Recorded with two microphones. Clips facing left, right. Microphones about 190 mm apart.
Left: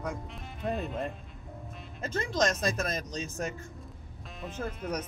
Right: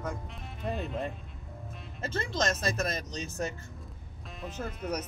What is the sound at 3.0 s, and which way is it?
Speech, 35° left (ahead or behind).